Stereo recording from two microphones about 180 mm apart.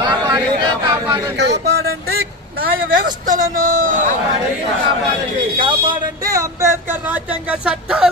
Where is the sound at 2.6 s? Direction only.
50° right (ahead or behind).